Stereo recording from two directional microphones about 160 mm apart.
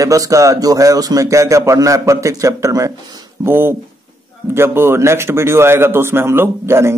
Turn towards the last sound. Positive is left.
turn(degrees=-15)  # may be behind; listen again after turning